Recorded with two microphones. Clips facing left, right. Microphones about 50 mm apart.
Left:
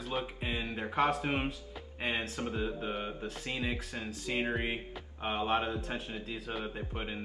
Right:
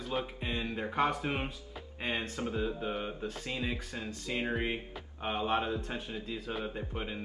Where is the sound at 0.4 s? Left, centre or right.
Centre.